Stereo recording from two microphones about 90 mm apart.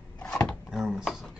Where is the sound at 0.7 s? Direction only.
5° right (ahead or behind).